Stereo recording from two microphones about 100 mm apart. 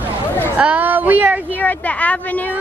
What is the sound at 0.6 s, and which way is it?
Speech, 15° right (ahead or behind).